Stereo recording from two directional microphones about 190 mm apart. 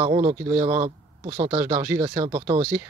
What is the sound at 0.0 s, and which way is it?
Speech, 30° right (ahead or behind).